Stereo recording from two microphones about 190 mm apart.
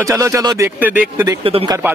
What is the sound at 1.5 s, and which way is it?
Speech, 30° right (ahead or behind).